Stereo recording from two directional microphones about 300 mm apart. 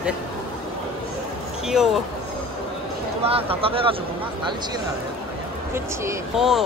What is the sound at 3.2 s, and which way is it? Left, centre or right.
Speech, centre.